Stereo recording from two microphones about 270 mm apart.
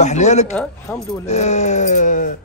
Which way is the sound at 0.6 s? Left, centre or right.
Centre.